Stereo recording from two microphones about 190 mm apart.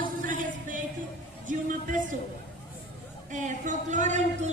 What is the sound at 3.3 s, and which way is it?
Speech, 40° right (ahead or behind).